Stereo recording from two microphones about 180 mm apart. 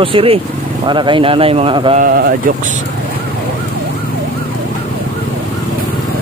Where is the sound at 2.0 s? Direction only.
55° right (ahead or behind).